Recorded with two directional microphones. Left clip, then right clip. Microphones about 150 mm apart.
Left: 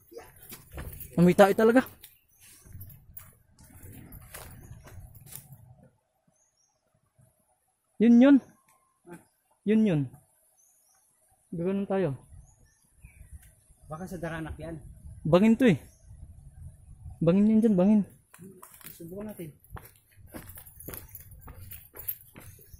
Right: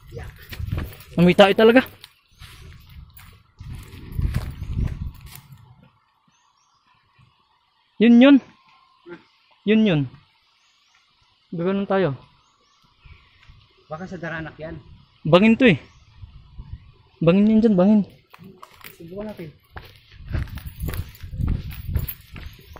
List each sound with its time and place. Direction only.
1.1 s speech: 25° left (ahead or behind)
1.4 s speech: 5° left (ahead or behind)
8.0 s a man's voice: 15° left (ahead or behind)
9.7 s a man's voice: 10° left (ahead or behind)
11.5 s a man's voice: 5° left (ahead or behind)
13.8 s speech: centre (ahead or behind)
15.2 s a man's voice: 10° left (ahead or behind)
17.2 s a man's voice: 10° left (ahead or behind)
18.3 s a sound: 55° right (ahead or behind)
20.5 s a sound: 50° right (ahead or behind)
22.3 s walk: 55° right (ahead or behind)